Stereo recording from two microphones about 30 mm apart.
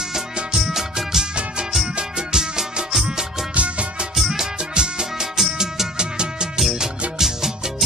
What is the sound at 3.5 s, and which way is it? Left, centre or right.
Music, right.